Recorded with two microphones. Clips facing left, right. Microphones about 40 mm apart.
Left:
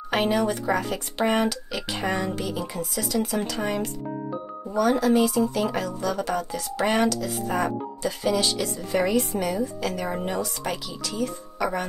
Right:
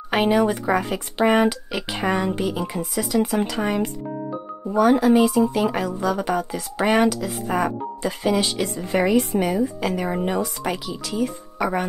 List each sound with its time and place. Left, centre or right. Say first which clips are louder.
0.1 s a woman's voice: right 4 dB; centre
8.2 s a woman's voice: right 3 dB; right